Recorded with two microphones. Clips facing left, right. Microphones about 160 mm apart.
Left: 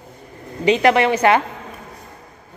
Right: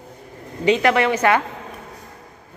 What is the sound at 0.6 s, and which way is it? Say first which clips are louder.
Speech: left 2 dB; 20° left (ahead or behind).